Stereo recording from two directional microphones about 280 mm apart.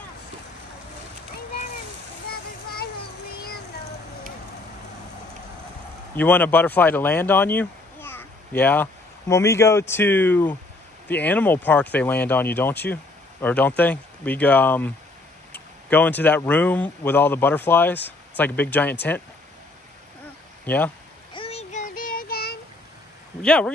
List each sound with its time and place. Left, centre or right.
6.1 s speech: centre
20.6 s a sound: centre
21.4 s child singing: left
23.4 s speech: centre